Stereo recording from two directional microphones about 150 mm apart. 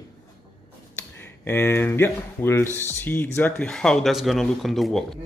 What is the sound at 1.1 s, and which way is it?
Speech, 15° left (ahead or behind).